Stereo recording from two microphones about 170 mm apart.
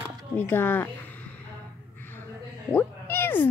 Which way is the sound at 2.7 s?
10° left (ahead or behind).